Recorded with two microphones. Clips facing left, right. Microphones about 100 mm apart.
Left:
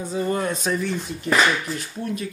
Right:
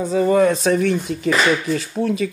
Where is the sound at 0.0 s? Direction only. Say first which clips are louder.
Right 9 dB; 90° right.